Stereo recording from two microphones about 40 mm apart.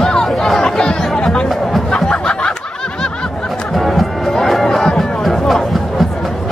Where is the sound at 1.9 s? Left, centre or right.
Left.